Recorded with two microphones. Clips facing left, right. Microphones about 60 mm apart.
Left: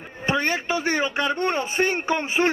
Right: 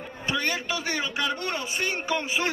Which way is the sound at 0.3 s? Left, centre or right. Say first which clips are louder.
Left 5 dB; left.